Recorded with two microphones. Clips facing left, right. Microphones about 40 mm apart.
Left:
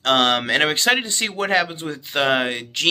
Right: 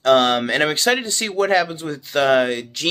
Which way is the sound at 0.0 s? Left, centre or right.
Left.